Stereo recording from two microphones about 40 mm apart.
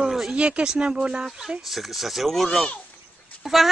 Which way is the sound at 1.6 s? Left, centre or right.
Centre.